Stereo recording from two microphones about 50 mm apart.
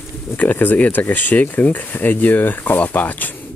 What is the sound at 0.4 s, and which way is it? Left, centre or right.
Speech, left.